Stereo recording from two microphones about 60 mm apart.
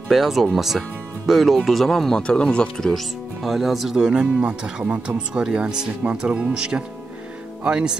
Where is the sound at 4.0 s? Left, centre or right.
Centre.